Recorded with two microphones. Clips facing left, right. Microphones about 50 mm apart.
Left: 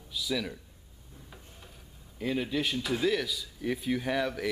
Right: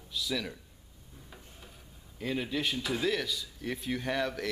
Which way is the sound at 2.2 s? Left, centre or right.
Centre.